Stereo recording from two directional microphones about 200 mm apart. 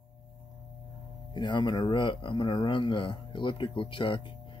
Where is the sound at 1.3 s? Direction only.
25° left (ahead or behind).